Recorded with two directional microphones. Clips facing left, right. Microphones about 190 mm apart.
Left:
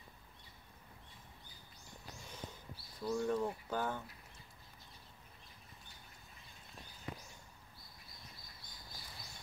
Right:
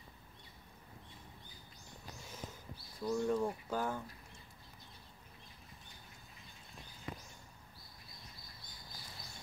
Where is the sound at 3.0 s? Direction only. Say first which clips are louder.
Right 2 dB; 5° right (ahead or behind).